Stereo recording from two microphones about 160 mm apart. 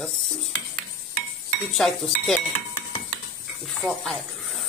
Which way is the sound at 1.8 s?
Centre (ahead or behind).